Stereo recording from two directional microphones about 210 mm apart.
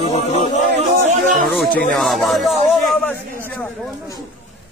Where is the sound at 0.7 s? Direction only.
35° right (ahead or behind).